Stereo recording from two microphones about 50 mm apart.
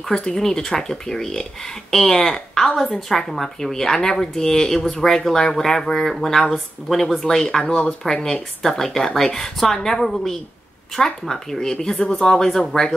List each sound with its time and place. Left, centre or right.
0.1 s speech: centre
7.5 s speech: left
8.0 s speech: centre